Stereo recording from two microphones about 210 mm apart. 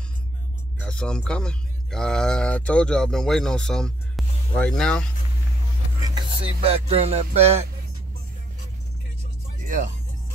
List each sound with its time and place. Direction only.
0.7 s speech: 5° left (ahead or behind)
6.0 s music: 25° right (ahead or behind)